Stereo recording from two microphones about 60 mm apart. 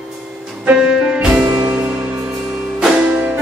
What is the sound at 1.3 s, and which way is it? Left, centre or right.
Music, right.